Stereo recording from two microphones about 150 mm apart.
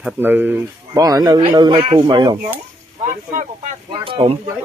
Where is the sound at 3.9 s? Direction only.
35° right (ahead or behind).